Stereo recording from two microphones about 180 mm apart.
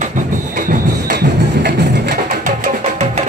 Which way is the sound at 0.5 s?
60° right (ahead or behind).